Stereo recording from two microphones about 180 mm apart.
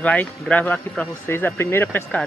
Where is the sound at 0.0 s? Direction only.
5° left (ahead or behind).